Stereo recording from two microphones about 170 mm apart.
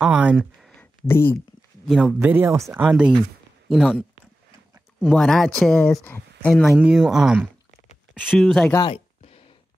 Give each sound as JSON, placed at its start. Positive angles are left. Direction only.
{"t": 0.0, "sound": "a sound", "side_deg": -5}
{"t": 1.0, "sound": "speech", "side_deg": 15}
{"t": 1.9, "sound": "speech", "side_deg": 0}
{"t": 2.1, "sound": "speech", "side_deg": -10}
{"t": 5.0, "sound": "speech", "side_deg": 0}
{"t": 8.7, "sound": "a sound", "side_deg": 35}